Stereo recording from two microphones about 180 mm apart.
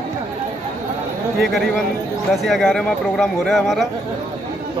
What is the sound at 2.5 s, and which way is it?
Speech, 5° left (ahead or behind).